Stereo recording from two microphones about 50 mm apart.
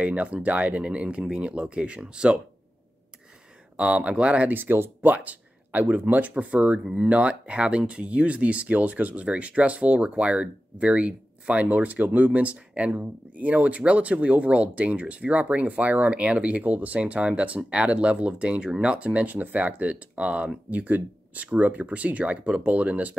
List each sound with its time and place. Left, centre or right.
0.0 s speech: right
3.7 s speech: right
4.6 s speech: right
5.0 s speech: right